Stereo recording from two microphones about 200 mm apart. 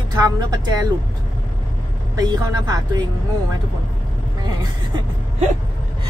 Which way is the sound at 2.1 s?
20° right (ahead or behind).